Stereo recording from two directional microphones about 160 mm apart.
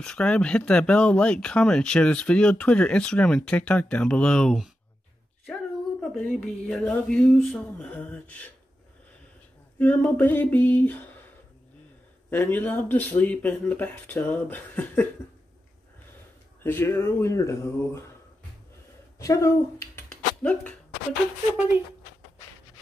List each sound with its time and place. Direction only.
0.0 s speech: 5° left (ahead or behind)
5.5 s a sound: centre (ahead or behind)
9.8 s speech: 10° left (ahead or behind)
12.3 s speech: 10° left (ahead or behind)
16.6 s speech: 15° left (ahead or behind)
19.1 s speech: 20° left (ahead or behind)